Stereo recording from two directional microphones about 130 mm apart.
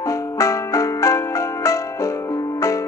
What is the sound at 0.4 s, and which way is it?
Music, 25° left (ahead or behind).